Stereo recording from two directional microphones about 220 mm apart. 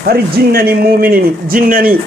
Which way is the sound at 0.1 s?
45° right (ahead or behind).